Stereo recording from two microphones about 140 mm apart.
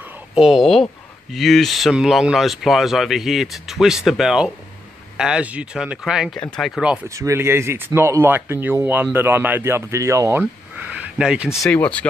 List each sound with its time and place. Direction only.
0.3 s speech: 5° right (ahead or behind)
7.2 s speech: 20° right (ahead or behind)
11.7 s speech: 10° left (ahead or behind)